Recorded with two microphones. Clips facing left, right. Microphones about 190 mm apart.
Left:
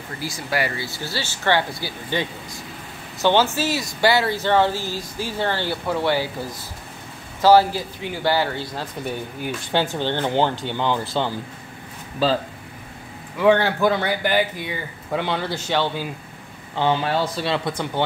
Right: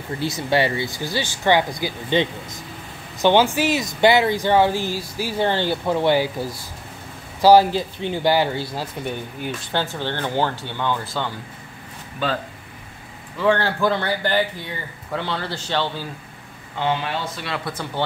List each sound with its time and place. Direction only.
0.2 s speech: 25° right (ahead or behind)
9.7 s speech: 15° left (ahead or behind)
13.4 s speech: 15° left (ahead or behind)
16.7 s speech: 30° left (ahead or behind)
17.6 s speech: 15° left (ahead or behind)